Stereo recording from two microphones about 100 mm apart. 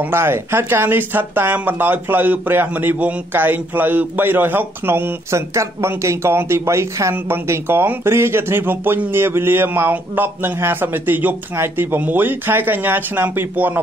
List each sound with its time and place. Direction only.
0.0 s speech: 25° right (ahead or behind)